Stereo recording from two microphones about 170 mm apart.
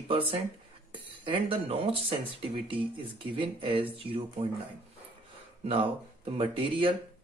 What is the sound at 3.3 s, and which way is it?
Speech, 30° right (ahead or behind).